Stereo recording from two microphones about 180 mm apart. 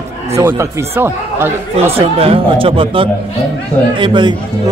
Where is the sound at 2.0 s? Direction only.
30° right (ahead or behind).